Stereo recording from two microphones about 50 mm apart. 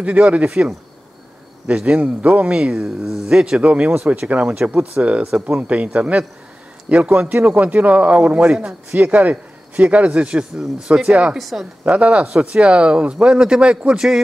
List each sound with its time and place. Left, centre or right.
0.0 s speech: right
1.7 s speech: right
2.7 s speech: centre
3.3 s speech: centre
11.3 s speech: centre
11.8 s speech: right